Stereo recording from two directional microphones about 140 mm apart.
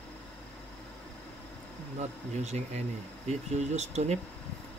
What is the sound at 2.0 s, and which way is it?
Speech, 55° right (ahead or behind).